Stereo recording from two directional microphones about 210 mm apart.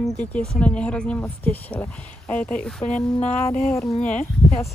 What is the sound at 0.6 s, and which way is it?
A woman's voice, 5° left (ahead or behind).